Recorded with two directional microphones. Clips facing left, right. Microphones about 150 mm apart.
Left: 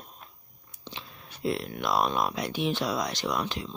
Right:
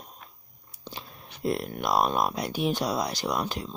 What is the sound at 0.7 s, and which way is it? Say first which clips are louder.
Biting: right 2 dB; 40° right (ahead or behind).